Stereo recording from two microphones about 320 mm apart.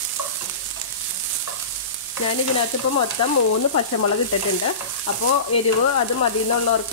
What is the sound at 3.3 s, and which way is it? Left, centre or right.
Frying, left.